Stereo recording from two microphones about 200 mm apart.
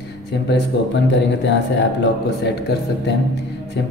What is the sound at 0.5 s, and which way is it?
Speech, 65° left (ahead or behind).